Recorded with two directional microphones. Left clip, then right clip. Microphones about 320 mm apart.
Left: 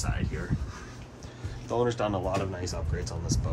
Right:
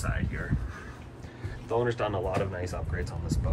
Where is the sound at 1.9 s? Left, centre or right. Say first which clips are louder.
Left 1 dB; centre.